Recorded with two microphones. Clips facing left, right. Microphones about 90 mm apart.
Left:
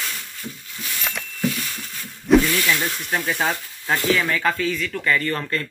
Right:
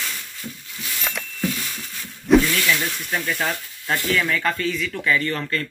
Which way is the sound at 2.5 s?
10° left (ahead or behind).